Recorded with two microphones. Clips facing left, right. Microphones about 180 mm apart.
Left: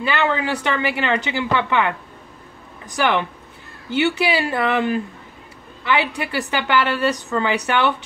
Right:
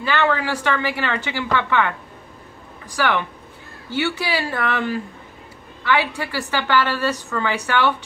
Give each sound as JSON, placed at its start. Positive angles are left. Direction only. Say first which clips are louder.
{"t": 0.0, "sound": "a woman's voice", "louder": "even", "side_deg": 20}